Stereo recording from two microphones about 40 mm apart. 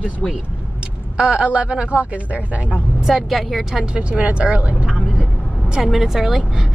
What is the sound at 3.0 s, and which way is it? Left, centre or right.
Speech, centre.